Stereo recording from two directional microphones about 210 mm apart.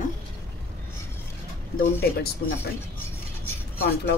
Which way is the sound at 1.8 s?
45° left (ahead or behind).